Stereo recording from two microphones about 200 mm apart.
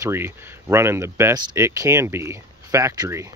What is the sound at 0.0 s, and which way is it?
Speech, 10° right (ahead or behind).